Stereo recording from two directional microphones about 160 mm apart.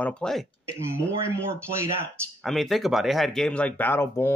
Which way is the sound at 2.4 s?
Centre (ahead or behind).